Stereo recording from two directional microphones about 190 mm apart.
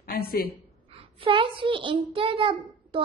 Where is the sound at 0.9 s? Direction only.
25° right (ahead or behind).